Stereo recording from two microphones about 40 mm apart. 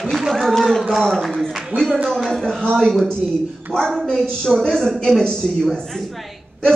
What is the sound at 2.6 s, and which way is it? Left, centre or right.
Speech, centre.